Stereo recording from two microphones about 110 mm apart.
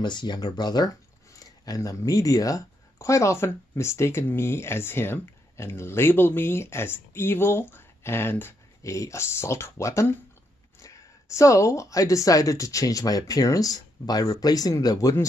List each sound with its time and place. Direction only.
0.0 s speech: 45° left (ahead or behind); by 10.1 s 25° left (ahead or behind)
11.3 s speech: 30° left (ahead or behind)